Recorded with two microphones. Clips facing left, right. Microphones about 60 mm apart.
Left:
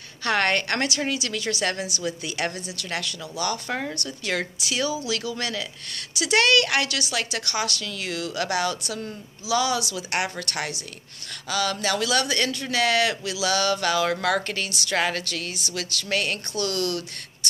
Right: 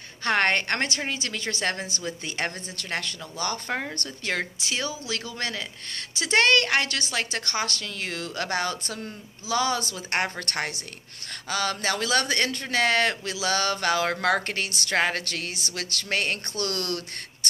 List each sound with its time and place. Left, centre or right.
0.2 s a woman's voice: right